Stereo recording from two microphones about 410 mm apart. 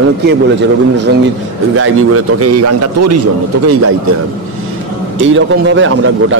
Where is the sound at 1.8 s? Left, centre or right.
Right.